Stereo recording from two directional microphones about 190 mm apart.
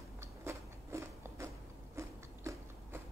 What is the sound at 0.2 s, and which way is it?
Biting, 15° right (ahead or behind).